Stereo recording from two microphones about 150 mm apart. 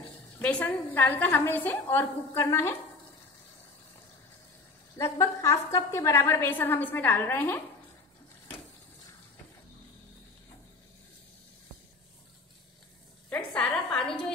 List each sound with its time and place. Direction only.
0.4 s a woman's voice: 10° left (ahead or behind)
4.9 s a woman's voice: 20° left (ahead or behind)
13.5 s a sound: 5° left (ahead or behind)